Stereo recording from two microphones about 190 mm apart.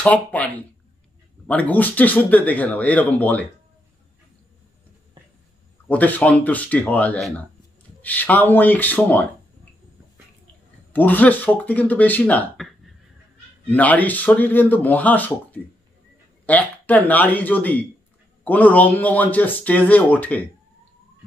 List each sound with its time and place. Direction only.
0.0 s speech: 10° left (ahead or behind)
1.5 s speech: 10° left (ahead or behind)
5.9 s speech: 10° left (ahead or behind)
10.9 s speech: 10° left (ahead or behind)